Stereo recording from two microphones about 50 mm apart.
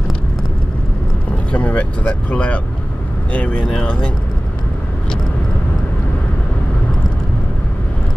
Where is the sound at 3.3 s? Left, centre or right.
Left.